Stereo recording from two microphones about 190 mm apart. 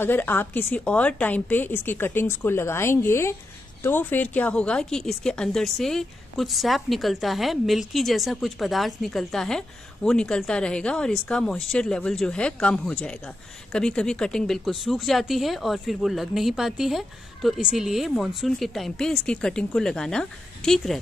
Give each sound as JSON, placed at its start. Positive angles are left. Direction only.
{"t": 0.0, "sound": "a woman's voice", "side_deg": 10}